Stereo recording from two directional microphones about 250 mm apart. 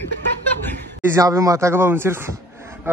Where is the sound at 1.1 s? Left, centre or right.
Centre.